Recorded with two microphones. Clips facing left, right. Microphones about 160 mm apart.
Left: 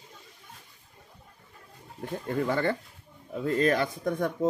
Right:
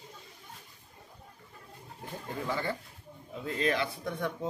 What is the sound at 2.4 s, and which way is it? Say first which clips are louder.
Speech: left 6 dB; 60° left (ahead or behind).